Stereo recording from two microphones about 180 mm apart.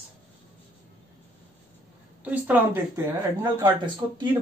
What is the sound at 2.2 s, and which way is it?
Speech, 10° right (ahead or behind).